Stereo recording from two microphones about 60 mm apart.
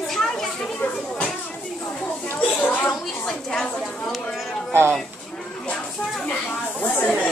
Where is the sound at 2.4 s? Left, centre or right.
Left.